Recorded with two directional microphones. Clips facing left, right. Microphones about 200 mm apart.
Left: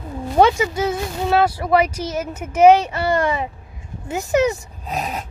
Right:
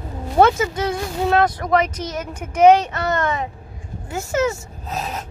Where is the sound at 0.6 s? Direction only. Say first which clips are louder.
Left 1 dB; 10° left (ahead or behind).